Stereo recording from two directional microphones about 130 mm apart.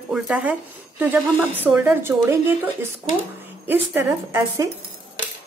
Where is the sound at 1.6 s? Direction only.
10° right (ahead or behind).